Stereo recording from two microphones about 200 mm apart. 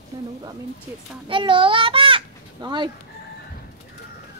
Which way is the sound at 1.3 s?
25° right (ahead or behind).